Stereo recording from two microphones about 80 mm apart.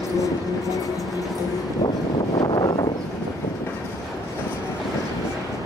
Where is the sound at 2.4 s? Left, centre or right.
Left.